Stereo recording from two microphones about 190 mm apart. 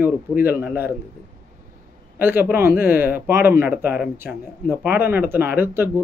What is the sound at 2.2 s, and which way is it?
A man's voice, 10° right (ahead or behind).